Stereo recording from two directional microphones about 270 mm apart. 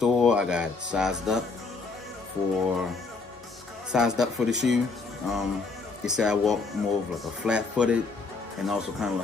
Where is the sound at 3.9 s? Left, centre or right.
Centre.